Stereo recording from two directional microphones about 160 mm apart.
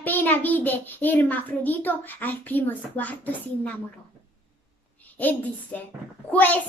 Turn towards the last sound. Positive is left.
turn(degrees=10)  # may be behind; listen again after turning